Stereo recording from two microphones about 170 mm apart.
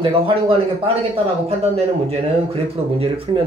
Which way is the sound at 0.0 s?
30° right (ahead or behind).